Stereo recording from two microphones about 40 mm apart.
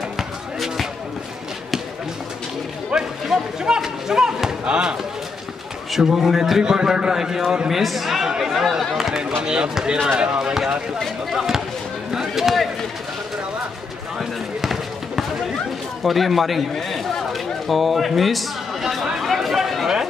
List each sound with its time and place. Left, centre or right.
2.9 s a sound: centre
4.6 s speech: right
5.9 s a man's voice: centre
9.4 s speech: right
10.5 s a man's voice: centre
14.6 s basketball bounce: centre
16.0 s a man's voice: centre
16.7 s a sound: centre